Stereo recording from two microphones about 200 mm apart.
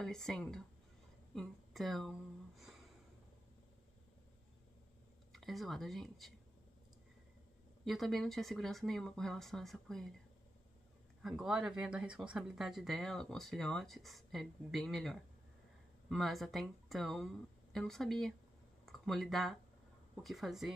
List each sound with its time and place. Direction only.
0.0 s speech: centre (ahead or behind)
5.3 s speech: centre (ahead or behind)
7.8 s speech: centre (ahead or behind)
11.2 s speech: 5° right (ahead or behind)